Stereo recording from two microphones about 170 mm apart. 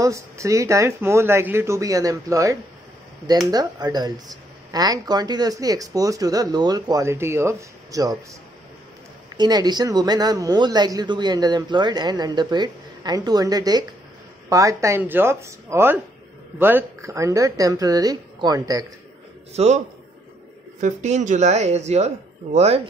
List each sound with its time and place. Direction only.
0.0 s speech: 20° right (ahead or behind)
9.4 s speech: 25° right (ahead or behind)
19.5 s speech: 40° right (ahead or behind)
20.8 s speech: 45° right (ahead or behind)